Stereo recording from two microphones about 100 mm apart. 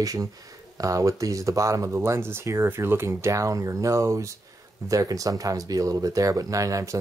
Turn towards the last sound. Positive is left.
turn(degrees=-30)  # may be behind; listen again after turning